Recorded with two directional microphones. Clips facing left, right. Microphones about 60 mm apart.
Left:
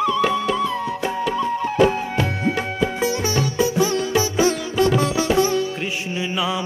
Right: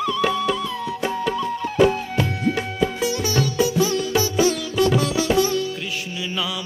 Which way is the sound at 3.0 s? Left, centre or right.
Left.